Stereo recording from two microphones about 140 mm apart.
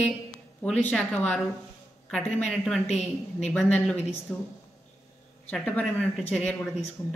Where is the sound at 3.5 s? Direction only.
5° left (ahead or behind).